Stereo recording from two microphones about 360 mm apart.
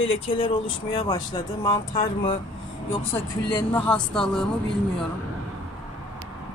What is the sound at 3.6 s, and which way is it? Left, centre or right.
Speech, centre.